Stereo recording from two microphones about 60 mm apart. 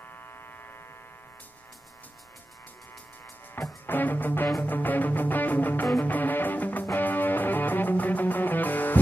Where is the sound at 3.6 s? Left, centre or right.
Left.